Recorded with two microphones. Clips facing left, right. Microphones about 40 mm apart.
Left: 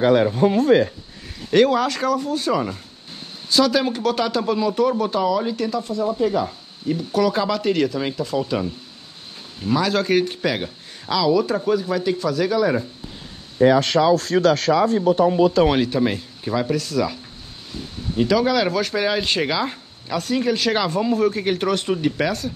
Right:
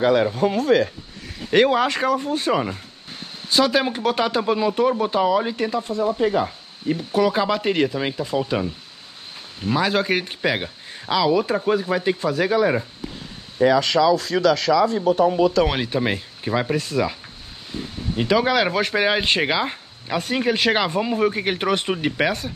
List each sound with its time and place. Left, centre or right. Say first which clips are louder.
1.5 s speech: even; right
14.0 s speech: left 1 dB; left
15.3 s speech: left 1 dB; right
15.6 s speech: left 4 dB; centre
15.9 s speech: left 2 dB; right